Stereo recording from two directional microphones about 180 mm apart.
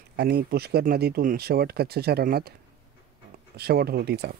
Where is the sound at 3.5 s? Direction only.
60° right (ahead or behind).